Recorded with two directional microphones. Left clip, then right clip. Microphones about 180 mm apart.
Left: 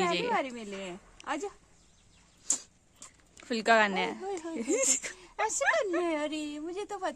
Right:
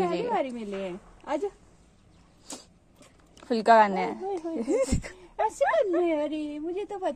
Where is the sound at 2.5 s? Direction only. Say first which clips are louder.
Left 8 dB; 20° left (ahead or behind).